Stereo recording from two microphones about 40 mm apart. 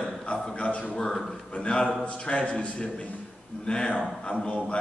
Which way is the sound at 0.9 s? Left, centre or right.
Centre.